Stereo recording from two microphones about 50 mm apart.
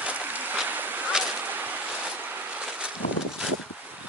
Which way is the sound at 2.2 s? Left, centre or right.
Right.